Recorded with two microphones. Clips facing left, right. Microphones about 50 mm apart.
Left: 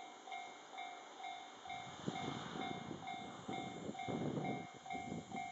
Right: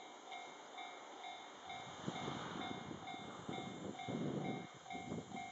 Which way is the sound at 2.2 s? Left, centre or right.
Right.